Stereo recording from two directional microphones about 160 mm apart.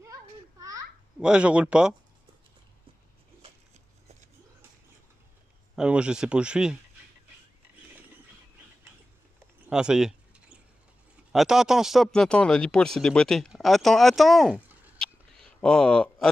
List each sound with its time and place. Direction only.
0.0 s children playing: 20° right (ahead or behind)
1.2 s speech: 5° right (ahead or behind)
5.8 s speech: 5° right (ahead or behind)
9.7 s speech: 5° right (ahead or behind)
11.3 s speech: 5° right (ahead or behind)
15.0 s a sound: 5° left (ahead or behind)